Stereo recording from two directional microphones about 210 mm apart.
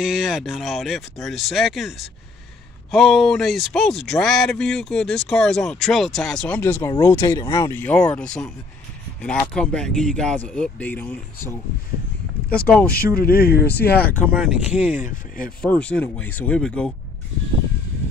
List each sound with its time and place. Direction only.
0.0 s speech: 5° right (ahead or behind)
12.5 s speech: 5° left (ahead or behind)
12.9 s speech: 45° left (ahead or behind)
14.5 s speech: 5° right (ahead or behind)
15.0 s speech: 40° left (ahead or behind)
15.6 s speech: 5° left (ahead or behind)